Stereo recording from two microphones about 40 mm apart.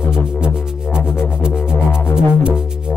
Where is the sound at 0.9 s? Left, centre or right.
Right.